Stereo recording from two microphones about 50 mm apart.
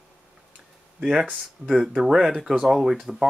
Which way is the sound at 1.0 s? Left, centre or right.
Centre.